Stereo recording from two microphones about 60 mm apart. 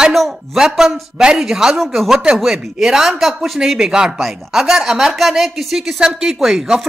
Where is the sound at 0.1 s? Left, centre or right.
Centre.